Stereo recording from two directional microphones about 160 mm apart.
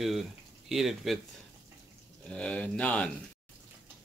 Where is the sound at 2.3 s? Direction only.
5° left (ahead or behind).